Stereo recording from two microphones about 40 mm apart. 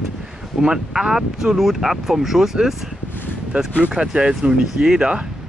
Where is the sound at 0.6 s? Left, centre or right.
Centre.